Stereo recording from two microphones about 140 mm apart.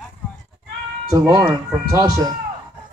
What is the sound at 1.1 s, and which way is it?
A man's voice, 25° right (ahead or behind).